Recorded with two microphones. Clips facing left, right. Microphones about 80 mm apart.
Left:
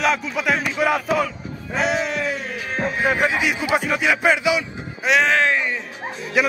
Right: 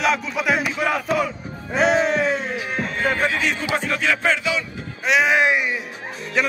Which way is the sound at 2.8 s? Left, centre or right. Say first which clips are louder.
Left 3 dB; centre.